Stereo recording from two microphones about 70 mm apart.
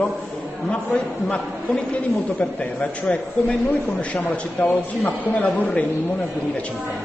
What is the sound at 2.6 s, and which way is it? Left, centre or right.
Speech, centre.